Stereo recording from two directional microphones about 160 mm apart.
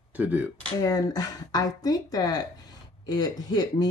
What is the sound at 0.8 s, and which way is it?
Speech, 25° left (ahead or behind).